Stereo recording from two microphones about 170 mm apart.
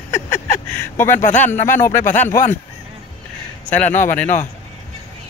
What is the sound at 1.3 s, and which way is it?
Speech, 10° left (ahead or behind).